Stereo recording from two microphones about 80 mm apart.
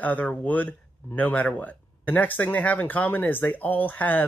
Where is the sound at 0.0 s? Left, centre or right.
Centre.